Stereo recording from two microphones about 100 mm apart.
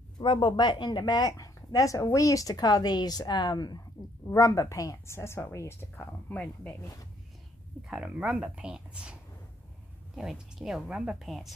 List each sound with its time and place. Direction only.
0.2 s a woman's voice: 55° left (ahead or behind); by 6.8 s 15° left (ahead or behind)
7.9 s a woman's voice: 10° right (ahead or behind)